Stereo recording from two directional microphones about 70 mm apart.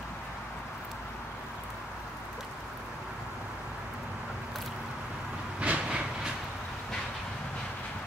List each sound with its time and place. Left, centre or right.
5.6 s train: centre